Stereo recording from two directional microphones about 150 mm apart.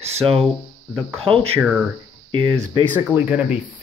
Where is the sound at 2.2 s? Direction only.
30° right (ahead or behind).